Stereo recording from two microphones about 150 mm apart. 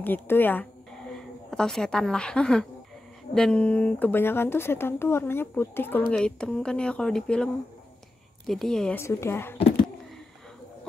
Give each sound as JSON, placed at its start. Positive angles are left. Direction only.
{"t": 0.0, "sound": "speech", "side_deg": 15}
{"t": 8.9, "sound": "speech", "side_deg": 15}